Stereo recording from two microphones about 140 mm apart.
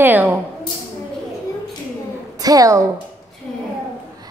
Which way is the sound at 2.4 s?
25° right (ahead or behind).